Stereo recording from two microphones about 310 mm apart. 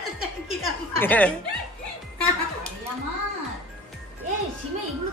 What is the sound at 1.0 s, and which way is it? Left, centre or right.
Speech, centre.